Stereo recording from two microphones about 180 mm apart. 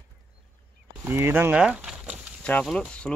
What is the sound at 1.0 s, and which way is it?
Speech, 10° right (ahead or behind).